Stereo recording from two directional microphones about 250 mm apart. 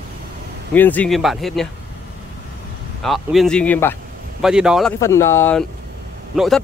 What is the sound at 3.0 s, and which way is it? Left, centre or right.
Speech, centre.